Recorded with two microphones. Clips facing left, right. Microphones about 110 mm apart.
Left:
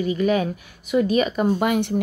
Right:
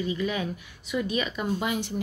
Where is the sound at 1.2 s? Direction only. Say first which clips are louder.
Left 9 dB; 45° left (ahead or behind).